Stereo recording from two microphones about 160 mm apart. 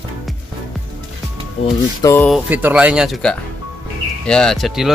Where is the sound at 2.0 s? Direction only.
20° left (ahead or behind).